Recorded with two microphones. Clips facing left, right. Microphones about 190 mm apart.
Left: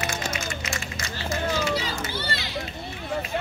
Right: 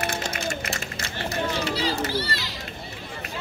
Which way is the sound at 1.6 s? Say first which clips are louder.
Right 1 dB; 35° right (ahead or behind).